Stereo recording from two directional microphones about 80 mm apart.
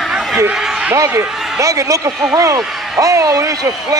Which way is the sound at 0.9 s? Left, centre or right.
Right.